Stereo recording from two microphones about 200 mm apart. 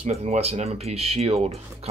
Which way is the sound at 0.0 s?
30° right (ahead or behind).